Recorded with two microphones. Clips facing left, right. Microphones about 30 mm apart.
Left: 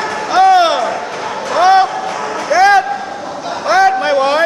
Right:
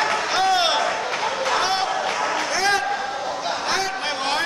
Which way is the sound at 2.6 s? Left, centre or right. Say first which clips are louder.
Left 14 dB; left.